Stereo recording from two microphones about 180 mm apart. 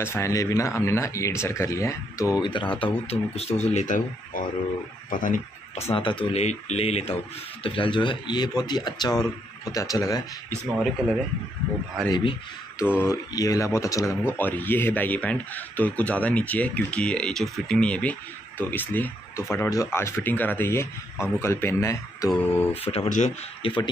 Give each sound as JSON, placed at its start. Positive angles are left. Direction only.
{"t": 0.0, "sound": "speech", "side_deg": 15}
{"t": 5.9, "sound": "speech", "side_deg": 30}
{"t": 12.1, "sound": "speech", "side_deg": 25}
{"t": 12.8, "sound": "speech", "side_deg": 10}
{"t": 22.8, "sound": "speech", "side_deg": 35}
{"t": 23.6, "sound": "speech", "side_deg": 30}